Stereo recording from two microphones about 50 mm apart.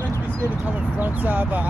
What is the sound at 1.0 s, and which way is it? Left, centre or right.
Speech, right.